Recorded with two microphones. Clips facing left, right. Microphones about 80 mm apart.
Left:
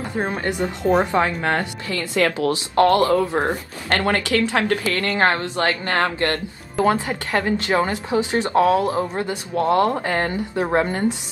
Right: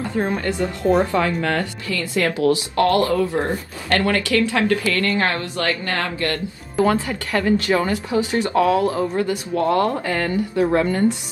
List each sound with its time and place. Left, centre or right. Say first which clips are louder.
0.1 s speech: right 1 dB; centre